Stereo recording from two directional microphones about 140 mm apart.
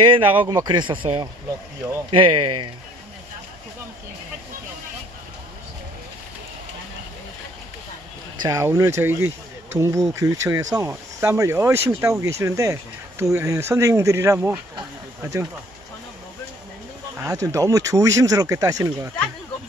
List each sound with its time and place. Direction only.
0.0 s speech: 40° right (ahead or behind)
8.4 s speech: 25° right (ahead or behind)
17.2 s speech: 25° right (ahead or behind)